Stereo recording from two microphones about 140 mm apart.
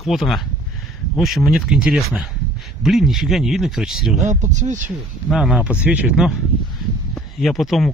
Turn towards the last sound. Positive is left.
turn(degrees=0)  # may be behind; listen again after turning